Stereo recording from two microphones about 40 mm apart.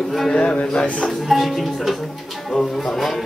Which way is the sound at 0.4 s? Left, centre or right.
Left.